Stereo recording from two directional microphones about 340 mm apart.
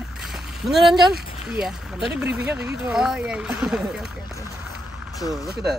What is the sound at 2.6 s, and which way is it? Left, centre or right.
Speech, centre.